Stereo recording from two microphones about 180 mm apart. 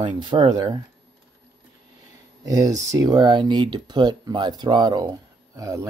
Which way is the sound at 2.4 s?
20° right (ahead or behind).